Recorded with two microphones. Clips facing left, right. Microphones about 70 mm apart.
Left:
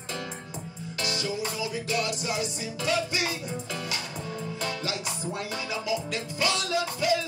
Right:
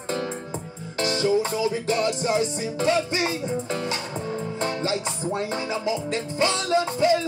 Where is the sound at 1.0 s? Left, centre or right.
Right.